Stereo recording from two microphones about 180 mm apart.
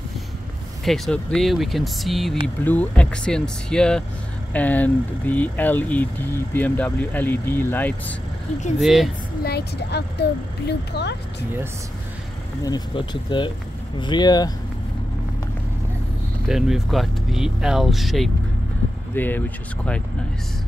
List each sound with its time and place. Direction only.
0.8 s speech: centre (ahead or behind)
8.7 s speech: centre (ahead or behind)
9.4 s speech: 60° left (ahead or behind)
12.6 s speech: 25° left (ahead or behind)
16.4 s speech: centre (ahead or behind)